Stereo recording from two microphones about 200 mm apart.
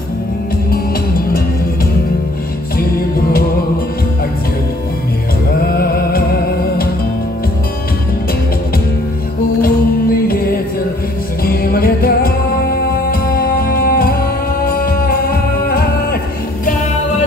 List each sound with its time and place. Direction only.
5.8 s music: 50° left (ahead or behind)
10.2 s music: 50° left (ahead or behind)